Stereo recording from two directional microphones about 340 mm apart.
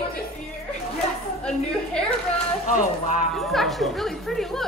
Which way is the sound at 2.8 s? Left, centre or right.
Left.